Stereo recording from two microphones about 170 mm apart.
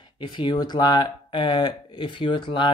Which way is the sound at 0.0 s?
25° left (ahead or behind).